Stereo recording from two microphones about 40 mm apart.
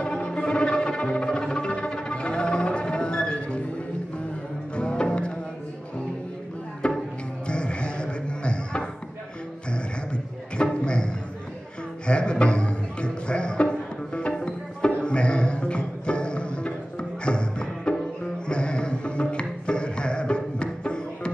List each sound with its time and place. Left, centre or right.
0.0 s music: left
4.7 s music: left
6.8 s music: left
12.1 s music: left